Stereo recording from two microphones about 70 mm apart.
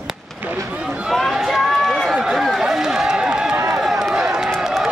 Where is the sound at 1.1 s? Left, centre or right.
Centre.